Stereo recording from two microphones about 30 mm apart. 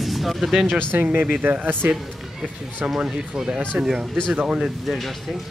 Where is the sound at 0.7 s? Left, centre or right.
Right.